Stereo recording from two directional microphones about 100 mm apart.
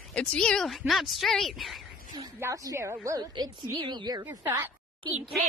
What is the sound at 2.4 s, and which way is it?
Speech, 35° right (ahead or behind).